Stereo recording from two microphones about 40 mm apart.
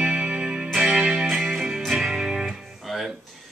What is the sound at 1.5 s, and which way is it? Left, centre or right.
Music, centre.